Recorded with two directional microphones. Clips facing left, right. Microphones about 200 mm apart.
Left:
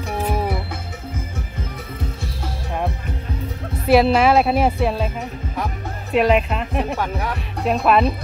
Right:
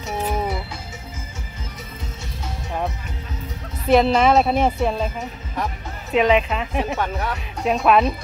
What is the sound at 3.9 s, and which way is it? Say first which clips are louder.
A woman's voice: left 1 dB; 5° left (ahead or behind).